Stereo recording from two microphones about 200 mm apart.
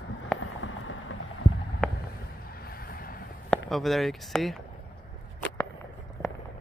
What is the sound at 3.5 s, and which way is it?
Speech, centre (ahead or behind).